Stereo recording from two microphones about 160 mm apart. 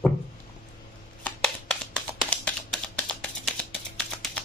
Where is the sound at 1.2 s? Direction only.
5° left (ahead or behind).